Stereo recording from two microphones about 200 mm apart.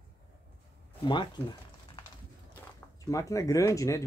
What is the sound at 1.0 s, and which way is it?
Speech, 25° left (ahead or behind).